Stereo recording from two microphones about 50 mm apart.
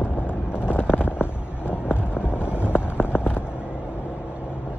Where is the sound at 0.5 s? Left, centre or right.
Left.